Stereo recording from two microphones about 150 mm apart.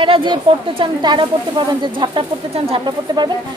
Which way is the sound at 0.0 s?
35° right (ahead or behind).